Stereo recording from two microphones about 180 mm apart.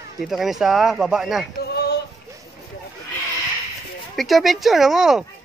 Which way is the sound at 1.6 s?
65° left (ahead or behind).